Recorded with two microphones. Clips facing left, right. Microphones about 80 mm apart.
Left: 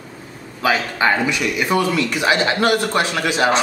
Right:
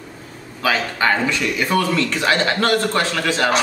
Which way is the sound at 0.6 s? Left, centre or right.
Centre.